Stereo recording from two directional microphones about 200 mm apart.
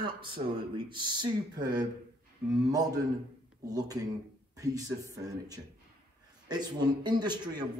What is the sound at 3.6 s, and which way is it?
A woman's voice, 20° right (ahead or behind).